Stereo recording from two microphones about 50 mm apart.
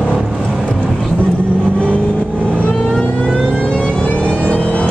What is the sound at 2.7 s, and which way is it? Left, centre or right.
Vehicle, centre.